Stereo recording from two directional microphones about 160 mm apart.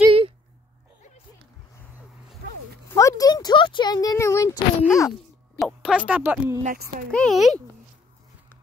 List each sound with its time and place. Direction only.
2.9 s a sound: 20° left (ahead or behind)
5.6 s speech: 5° right (ahead or behind)
6.6 s speech: 60° right (ahead or behind)
7.1 s speech: 5° left (ahead or behind)